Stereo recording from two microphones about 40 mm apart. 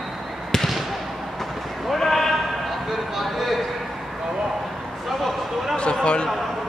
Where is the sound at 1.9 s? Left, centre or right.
Centre.